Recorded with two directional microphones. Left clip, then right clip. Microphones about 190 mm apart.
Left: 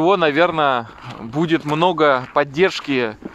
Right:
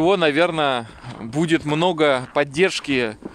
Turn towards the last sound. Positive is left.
turn(degrees=-15)  # may be behind; listen again after turning